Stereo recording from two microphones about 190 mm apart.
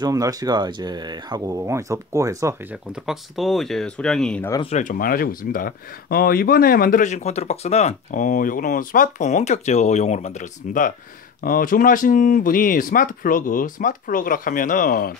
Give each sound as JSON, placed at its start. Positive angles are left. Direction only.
{"t": 0.0, "sound": "speech", "side_deg": -20}
{"t": 2.9, "sound": "speech", "side_deg": 0}
{"t": 4.6, "sound": "speech", "side_deg": 40}